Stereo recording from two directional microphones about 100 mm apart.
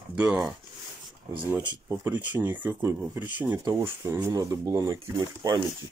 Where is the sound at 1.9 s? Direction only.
15° right (ahead or behind).